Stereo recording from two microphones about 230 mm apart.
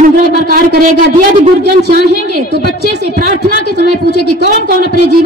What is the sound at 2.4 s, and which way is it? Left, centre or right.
A woman's voice, right.